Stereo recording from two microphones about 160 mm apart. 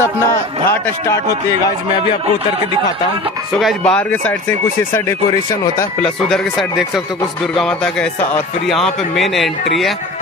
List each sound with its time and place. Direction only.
0.7 s speech: 15° left (ahead or behind)
3.5 s speech: 5° left (ahead or behind)
6.0 s a man's voice: centre (ahead or behind)